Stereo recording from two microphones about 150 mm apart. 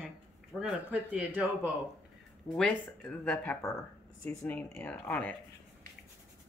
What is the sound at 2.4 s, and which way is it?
Speech, 5° left (ahead or behind).